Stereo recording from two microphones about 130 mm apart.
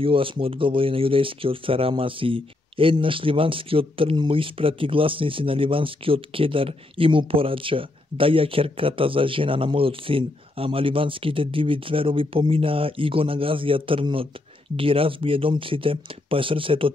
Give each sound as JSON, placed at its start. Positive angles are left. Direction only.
{"t": 0.0, "sound": "speech", "side_deg": -45}